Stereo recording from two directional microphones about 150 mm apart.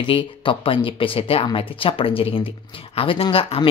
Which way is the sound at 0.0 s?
35° left (ahead or behind).